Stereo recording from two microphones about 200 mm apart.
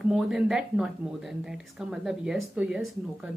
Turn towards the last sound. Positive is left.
turn(degrees=-5)  # may be behind; listen again after turning